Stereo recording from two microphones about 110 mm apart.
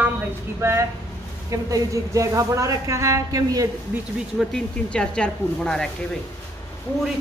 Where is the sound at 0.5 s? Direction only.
25° right (ahead or behind).